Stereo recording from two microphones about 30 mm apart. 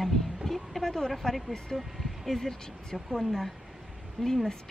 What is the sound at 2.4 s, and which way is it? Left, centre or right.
Speech, centre.